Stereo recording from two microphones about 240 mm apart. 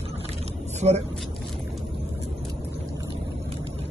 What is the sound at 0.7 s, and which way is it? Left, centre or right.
Speech, right.